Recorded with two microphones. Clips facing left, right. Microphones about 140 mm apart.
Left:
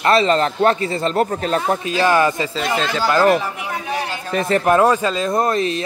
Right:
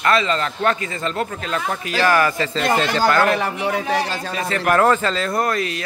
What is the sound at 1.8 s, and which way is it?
Speech, 20° left (ahead or behind).